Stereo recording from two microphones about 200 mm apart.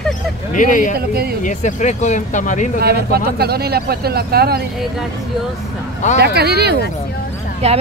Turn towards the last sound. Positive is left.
turn(degrees=-30)  # may be behind; listen again after turning